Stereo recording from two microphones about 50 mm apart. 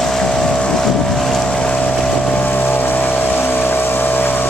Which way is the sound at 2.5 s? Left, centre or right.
Left.